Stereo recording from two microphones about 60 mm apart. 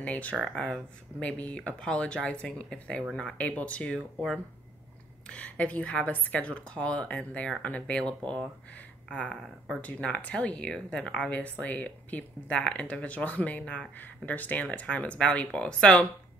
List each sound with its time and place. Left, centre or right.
0.0 s speech: left
5.2 s speech: centre